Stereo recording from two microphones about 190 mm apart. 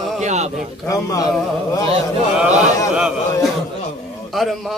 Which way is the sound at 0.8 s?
15° left (ahead or behind).